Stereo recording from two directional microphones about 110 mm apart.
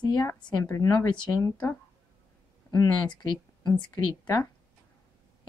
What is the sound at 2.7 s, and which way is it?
Speech, 30° left (ahead or behind).